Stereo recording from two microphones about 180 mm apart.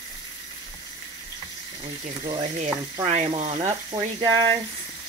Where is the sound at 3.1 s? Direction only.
40° right (ahead or behind).